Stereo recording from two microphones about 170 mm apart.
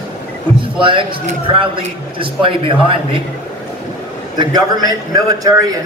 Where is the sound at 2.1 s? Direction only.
30° right (ahead or behind).